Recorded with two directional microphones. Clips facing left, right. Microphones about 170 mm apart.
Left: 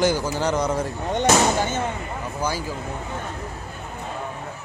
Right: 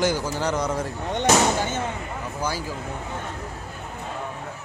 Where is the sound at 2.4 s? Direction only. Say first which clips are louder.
Left 2 dB; 20° left (ahead or behind).